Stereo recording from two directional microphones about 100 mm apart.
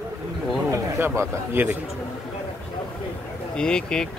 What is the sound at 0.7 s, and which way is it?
A man's voice, 25° right (ahead or behind).